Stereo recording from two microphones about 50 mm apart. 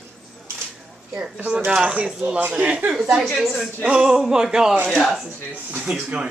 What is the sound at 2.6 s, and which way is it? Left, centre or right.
Speech, right.